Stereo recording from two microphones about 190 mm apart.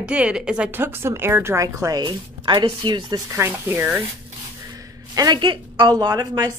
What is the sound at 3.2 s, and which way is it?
Speech, 15° right (ahead or behind).